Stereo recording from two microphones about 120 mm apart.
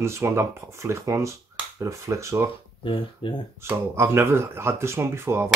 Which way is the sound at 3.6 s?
20° right (ahead or behind).